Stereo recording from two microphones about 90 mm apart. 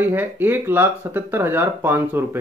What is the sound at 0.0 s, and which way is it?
Speech, 20° right (ahead or behind).